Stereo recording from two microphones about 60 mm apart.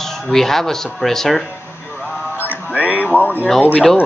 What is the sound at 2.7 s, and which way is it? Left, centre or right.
Speech, right.